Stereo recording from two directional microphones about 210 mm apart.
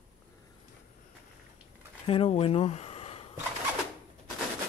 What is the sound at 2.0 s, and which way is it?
Speech, 25° left (ahead or behind).